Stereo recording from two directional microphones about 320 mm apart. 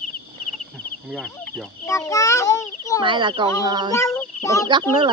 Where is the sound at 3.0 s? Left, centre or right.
Centre.